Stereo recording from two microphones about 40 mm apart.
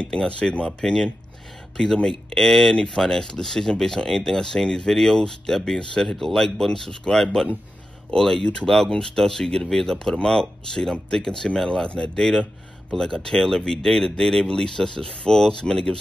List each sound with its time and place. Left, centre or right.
0.0 s a man's voice: centre